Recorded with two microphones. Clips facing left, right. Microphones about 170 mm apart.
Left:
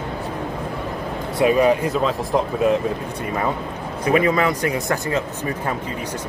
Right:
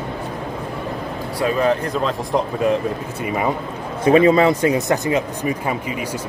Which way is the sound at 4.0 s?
25° right (ahead or behind).